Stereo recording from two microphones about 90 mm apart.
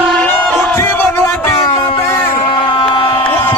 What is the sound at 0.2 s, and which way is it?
Music, 5° left (ahead or behind).